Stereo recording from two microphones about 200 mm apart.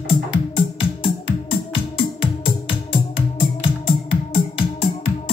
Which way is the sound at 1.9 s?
25° left (ahead or behind).